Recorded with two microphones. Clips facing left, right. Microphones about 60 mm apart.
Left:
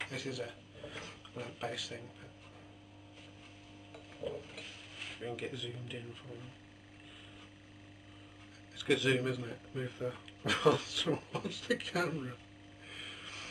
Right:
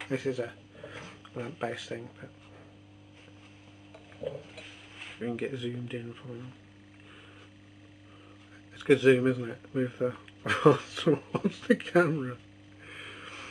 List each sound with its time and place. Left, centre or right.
0.1 s speech: right
0.5 s a sound: right
1.0 s speech: right
4.3 s dishes: centre
5.2 s speech: right
8.7 s speech: right
12.9 s a sound: right